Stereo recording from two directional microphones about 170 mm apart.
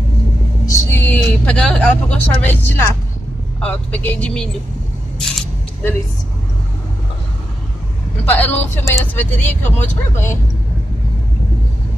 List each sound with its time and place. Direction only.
0.7 s speech: 10° left (ahead or behind)
8.3 s speech: 10° left (ahead or behind)